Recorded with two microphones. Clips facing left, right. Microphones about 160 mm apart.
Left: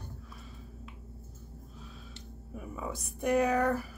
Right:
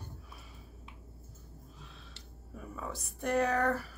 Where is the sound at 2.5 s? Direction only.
10° left (ahead or behind).